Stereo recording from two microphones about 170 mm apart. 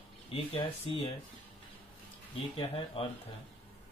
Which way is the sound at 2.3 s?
35° left (ahead or behind).